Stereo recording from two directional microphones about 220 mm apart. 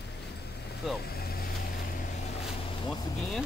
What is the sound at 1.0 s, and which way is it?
Vehicle, 45° left (ahead or behind).